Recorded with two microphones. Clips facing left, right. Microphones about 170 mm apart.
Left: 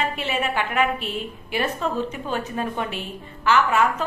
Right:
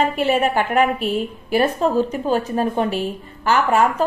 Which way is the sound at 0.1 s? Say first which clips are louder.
Right 8 dB; 45° right (ahead or behind).